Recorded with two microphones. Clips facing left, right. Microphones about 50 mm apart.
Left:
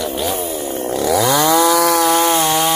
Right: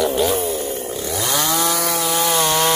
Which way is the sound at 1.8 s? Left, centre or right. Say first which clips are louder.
Left 8 dB; left.